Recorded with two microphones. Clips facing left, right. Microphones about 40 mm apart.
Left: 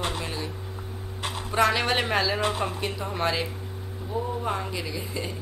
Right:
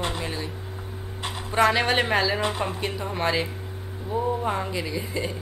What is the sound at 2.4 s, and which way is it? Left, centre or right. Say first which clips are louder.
Speech: even; right.